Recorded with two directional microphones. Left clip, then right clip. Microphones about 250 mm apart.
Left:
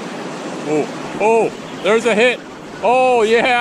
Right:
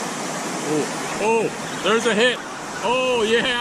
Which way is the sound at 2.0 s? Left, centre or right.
Centre.